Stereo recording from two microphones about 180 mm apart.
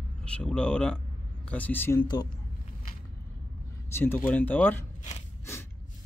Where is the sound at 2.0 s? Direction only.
25° left (ahead or behind).